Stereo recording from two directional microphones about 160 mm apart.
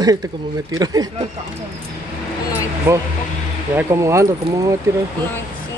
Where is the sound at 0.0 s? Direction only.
20° right (ahead or behind).